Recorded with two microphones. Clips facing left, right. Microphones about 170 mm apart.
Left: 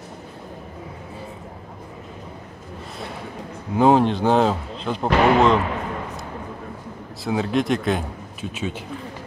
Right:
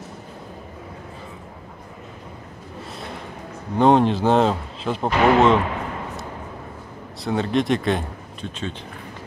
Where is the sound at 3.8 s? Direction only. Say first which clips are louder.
Even; centre (ahead or behind).